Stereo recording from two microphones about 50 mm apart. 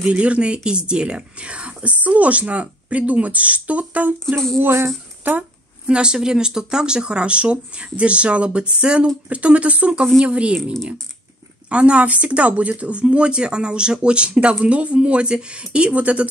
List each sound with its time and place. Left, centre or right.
0.0 s speech: right
4.6 s speech: right
5.9 s speech: centre
10.6 s speech: centre
11.7 s speech: right